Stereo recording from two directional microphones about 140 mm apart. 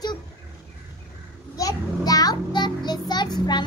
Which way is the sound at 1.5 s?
25° left (ahead or behind).